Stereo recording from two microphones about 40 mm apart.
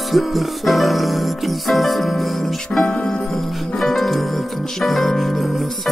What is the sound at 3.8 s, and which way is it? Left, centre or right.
Music, centre.